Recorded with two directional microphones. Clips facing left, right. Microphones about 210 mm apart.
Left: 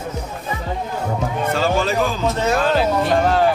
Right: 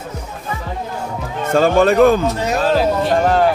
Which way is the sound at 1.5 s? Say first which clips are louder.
Right 8 dB; 55° right (ahead or behind).